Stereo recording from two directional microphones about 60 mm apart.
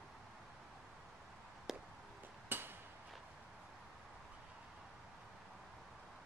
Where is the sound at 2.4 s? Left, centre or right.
Right.